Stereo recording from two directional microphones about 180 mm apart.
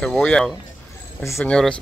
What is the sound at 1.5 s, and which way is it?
Speech, 5° left (ahead or behind).